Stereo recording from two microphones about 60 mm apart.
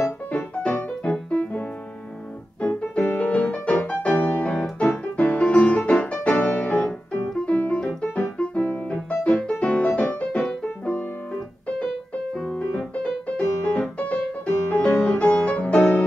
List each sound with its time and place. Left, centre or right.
0.3 s music: centre
2.6 s piano: centre
3.1 s music: left
7.5 s keyboard: left
7.8 s keyboard: centre
9.1 s music: left
12.4 s music: centre